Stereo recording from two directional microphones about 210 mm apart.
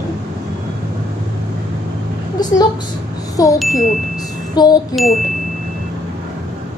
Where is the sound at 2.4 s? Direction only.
20° left (ahead or behind).